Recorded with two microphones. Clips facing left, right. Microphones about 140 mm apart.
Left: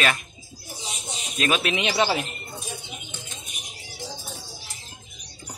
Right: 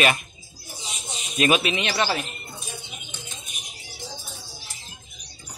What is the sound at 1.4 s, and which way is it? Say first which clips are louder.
Speech: right 4 dB; 10° right (ahead or behind).